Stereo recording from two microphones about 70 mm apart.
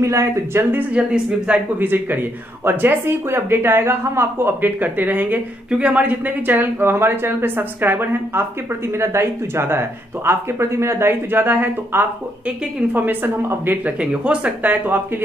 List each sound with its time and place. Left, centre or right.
0.0 s speech: right
0.7 s speech: centre
1.8 s speech: right
13.8 s speech: centre